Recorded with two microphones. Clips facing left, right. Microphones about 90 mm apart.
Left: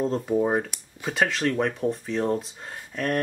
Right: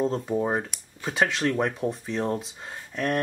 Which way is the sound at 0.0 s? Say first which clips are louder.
Left 2 dB; centre (ahead or behind).